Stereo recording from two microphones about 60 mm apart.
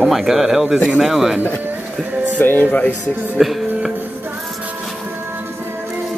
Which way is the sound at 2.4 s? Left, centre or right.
Left.